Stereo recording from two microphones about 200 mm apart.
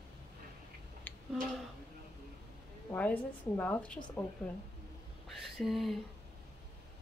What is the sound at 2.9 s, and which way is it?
A woman's voice, 5° left (ahead or behind).